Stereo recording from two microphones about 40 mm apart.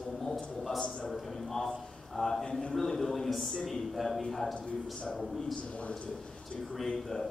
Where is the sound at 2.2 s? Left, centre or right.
Centre.